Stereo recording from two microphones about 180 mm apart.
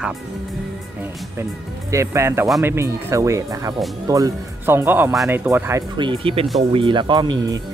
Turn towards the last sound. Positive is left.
turn(degrees=-20)  # may be behind; listen again after turning